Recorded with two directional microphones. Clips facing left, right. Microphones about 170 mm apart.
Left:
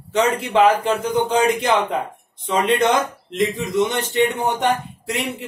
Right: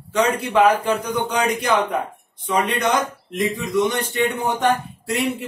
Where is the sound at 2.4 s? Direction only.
25° left (ahead or behind).